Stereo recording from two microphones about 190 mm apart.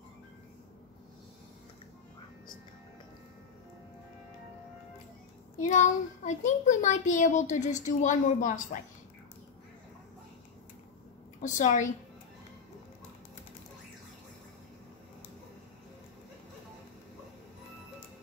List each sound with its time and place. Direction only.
5.6 s a child's voice: 40° left (ahead or behind)
11.4 s a child's voice: 40° left (ahead or behind)